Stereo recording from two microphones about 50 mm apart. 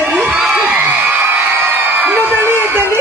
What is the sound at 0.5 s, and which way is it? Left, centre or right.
Crowd, right.